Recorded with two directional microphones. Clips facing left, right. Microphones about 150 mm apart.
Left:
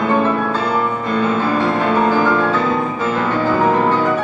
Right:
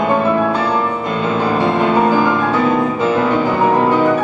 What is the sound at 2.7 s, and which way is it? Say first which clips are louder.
Music: right 4 dB; 20° right (ahead or behind).